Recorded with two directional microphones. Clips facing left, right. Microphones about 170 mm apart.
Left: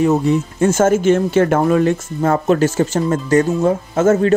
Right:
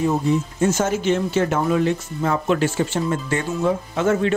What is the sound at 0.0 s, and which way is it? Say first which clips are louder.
Speech: left 5 dB; 75° left (ahead or behind).